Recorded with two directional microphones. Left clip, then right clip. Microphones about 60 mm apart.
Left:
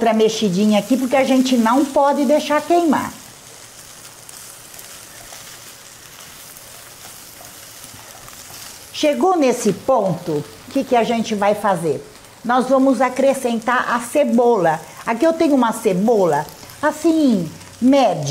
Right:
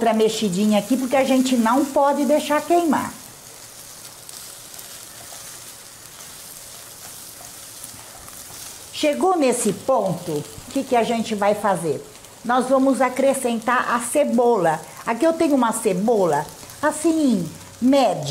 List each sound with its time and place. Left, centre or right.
0.0 s speech: centre
2.9 s frying: centre
8.9 s speech: centre
10.7 s speech: centre
12.4 s speech: left
12.7 s speech: centre
15.7 s frying: centre
17.8 s speech: centre